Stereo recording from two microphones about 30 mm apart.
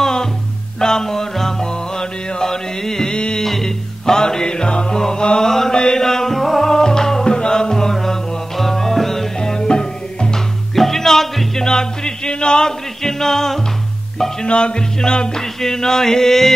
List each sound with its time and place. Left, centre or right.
0.0 s music: left
4.0 s music: centre
4.9 s music: centre
5.4 s chant: centre
5.8 s music: centre
9.4 s music: left
10.8 s music: centre
13.0 s music: centre
14.4 s music: left
15.0 s music: left
15.6 s chant: centre